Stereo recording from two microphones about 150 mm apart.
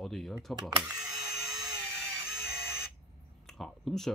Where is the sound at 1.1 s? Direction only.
25° right (ahead or behind).